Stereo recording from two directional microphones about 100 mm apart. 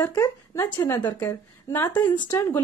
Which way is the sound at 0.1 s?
30° left (ahead or behind).